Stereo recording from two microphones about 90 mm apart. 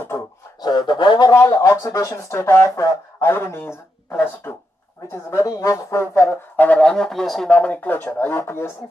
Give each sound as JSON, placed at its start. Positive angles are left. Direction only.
{"t": 0.6, "sound": "speech", "side_deg": 55}
{"t": 1.3, "sound": "a woman's voice", "side_deg": 30}
{"t": 6.6, "sound": "speech", "side_deg": 15}
{"t": 7.5, "sound": "speech", "side_deg": 15}